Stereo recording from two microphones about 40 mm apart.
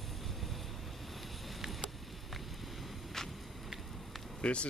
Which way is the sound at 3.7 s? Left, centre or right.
Centre.